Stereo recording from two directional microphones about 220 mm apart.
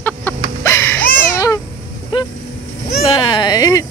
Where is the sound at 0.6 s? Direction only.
10° left (ahead or behind).